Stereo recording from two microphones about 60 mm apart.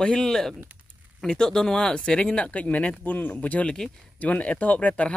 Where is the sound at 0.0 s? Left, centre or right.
Centre.